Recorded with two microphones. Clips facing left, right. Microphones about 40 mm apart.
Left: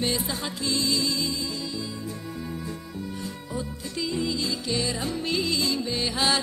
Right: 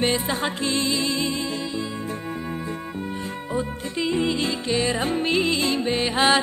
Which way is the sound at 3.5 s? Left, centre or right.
Right.